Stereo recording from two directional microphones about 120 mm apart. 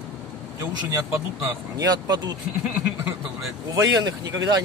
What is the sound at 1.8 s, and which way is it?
Speech, 35° right (ahead or behind).